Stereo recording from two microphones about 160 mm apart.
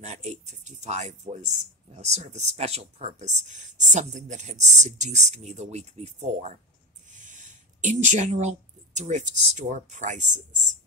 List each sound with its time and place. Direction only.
0.0 s speech: 45° right (ahead or behind)